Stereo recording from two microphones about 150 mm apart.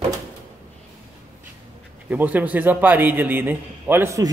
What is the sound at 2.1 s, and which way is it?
A man's voice, 10° right (ahead or behind).